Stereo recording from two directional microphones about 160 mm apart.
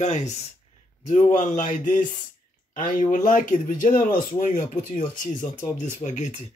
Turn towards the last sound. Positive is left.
turn(degrees=50)  # may be behind; listen again after turning